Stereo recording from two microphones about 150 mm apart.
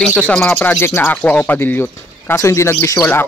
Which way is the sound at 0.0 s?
Centre (ahead or behind).